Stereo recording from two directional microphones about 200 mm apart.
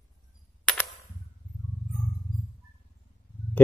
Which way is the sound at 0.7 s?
5° left (ahead or behind).